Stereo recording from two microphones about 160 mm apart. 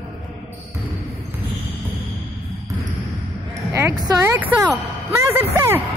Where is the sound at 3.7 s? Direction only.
20° right (ahead or behind).